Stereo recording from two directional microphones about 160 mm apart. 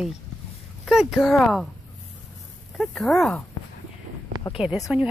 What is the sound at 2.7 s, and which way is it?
Speech, 5° left (ahead or behind).